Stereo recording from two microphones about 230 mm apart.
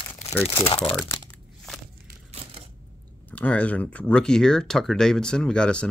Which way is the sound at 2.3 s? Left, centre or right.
Right.